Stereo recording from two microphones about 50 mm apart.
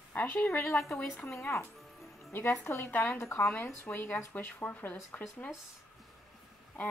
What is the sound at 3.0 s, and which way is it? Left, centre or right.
Speech, left.